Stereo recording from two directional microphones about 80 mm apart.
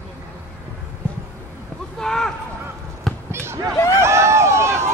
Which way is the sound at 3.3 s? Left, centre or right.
Right.